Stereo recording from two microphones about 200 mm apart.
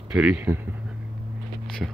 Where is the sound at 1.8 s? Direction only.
5° right (ahead or behind).